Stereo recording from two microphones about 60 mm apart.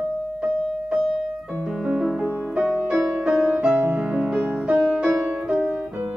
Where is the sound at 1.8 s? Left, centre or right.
Centre.